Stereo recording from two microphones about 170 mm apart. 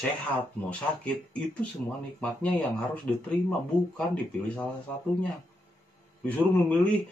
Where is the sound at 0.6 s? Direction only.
10° left (ahead or behind).